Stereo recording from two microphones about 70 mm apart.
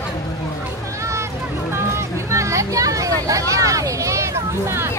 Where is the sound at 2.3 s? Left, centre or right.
Right.